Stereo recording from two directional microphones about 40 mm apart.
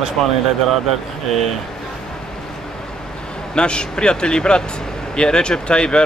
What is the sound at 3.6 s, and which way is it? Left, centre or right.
Speech, left.